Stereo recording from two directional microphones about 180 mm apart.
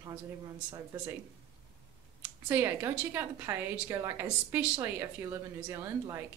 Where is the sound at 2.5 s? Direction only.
15° right (ahead or behind).